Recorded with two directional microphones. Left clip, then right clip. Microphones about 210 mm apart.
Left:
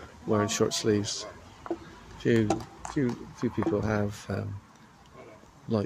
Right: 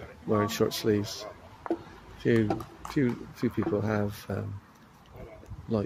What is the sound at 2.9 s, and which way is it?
Speech, 10° right (ahead or behind).